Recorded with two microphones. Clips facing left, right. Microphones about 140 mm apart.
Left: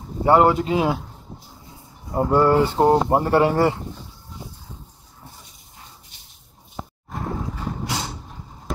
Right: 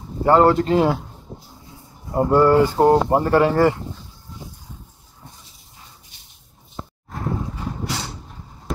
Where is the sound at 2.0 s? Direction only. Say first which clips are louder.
Right 2 dB; centre (ahead or behind).